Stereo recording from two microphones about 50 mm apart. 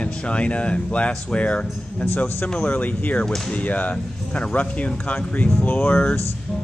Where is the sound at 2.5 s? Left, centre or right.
Left.